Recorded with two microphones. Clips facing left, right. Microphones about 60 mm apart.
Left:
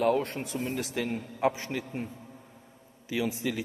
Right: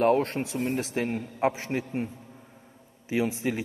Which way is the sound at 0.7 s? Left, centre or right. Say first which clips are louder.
Right 3 dB; right.